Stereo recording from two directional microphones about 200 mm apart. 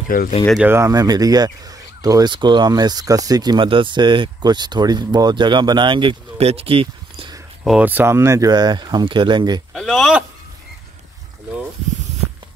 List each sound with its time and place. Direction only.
0.1 s speech: 45° left (ahead or behind)
0.5 s speech: 5° right (ahead or behind); by 7.3 s 25° right (ahead or behind)
7.6 s speech: 5° right (ahead or behind); by 9.6 s 20° right (ahead or behind)
9.8 s speech: centre (ahead or behind)